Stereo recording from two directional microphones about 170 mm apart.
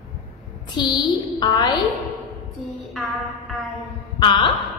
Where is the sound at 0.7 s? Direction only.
25° left (ahead or behind).